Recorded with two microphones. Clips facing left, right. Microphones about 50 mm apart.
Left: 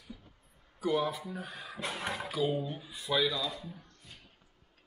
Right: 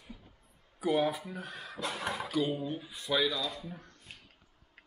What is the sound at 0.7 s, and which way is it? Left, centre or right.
Speech, centre.